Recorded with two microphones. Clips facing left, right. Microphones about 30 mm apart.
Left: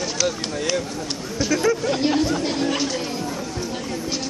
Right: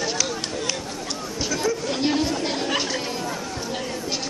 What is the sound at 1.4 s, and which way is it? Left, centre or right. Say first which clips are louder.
Chatter: left 5 dB; centre.